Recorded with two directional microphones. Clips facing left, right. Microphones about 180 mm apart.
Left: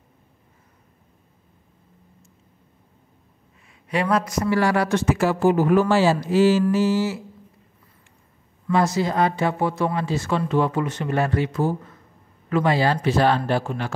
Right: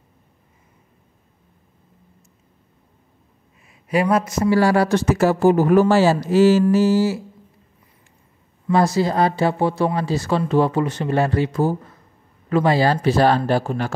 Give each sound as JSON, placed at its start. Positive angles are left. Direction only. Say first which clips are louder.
{"t": 3.9, "sound": "speech", "louder": "right 3 dB", "side_deg": -25}
{"t": 8.7, "sound": "speech", "louder": "right 3 dB", "side_deg": -35}